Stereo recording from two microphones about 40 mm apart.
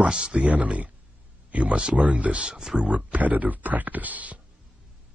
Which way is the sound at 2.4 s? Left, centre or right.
Centre.